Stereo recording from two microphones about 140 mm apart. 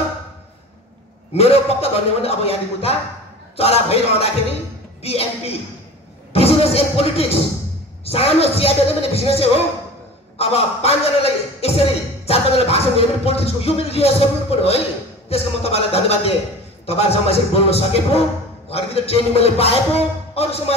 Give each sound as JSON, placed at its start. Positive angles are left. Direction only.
{"t": 1.3, "sound": "a man's voice", "side_deg": 45}